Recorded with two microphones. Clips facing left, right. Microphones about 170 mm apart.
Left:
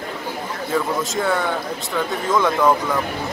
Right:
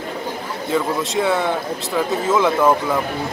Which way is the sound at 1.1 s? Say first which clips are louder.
Right 4 dB; centre (ahead or behind).